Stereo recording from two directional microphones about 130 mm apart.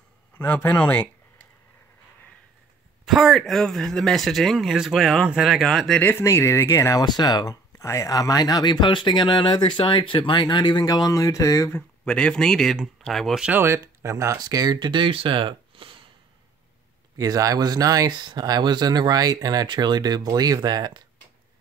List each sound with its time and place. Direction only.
0.4 s speech: 15° left (ahead or behind)
3.1 s speech: centre (ahead or behind)
5.9 s speech: 15° left (ahead or behind)
11.7 s speech: 10° left (ahead or behind)
13.5 s speech: 20° right (ahead or behind); by 16.0 s 45° right (ahead or behind)
17.2 s speech: 25° right (ahead or behind)